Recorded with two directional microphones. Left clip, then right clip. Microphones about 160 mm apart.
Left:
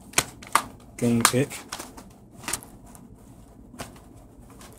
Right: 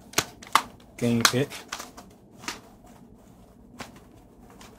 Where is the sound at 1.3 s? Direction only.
5° left (ahead or behind).